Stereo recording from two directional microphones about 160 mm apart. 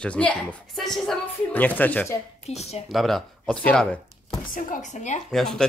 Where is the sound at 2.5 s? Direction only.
40° left (ahead or behind).